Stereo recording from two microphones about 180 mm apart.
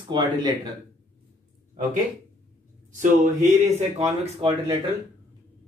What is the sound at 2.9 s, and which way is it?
Speech, 45° right (ahead or behind).